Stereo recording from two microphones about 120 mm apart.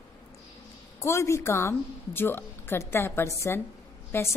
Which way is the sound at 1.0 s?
25° left (ahead or behind).